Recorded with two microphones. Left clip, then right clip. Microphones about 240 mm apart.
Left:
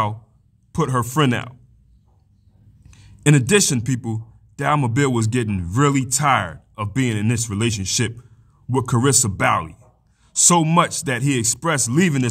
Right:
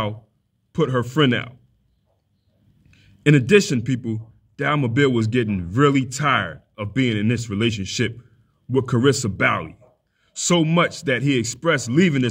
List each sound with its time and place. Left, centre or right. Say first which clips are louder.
0.7 s speech: even; left
2.9 s a man's voice: right 1 dB; left